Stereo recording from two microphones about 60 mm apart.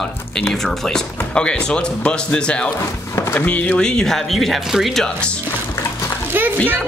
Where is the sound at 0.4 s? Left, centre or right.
Centre.